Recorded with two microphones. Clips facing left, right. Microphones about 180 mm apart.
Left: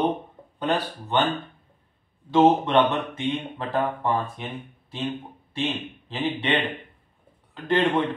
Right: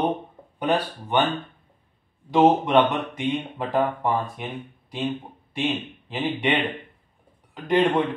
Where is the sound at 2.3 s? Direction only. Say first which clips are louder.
Right 1 dB; 15° right (ahead or behind).